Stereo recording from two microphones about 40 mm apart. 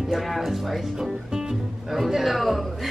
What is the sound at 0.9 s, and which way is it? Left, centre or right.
Speech, centre.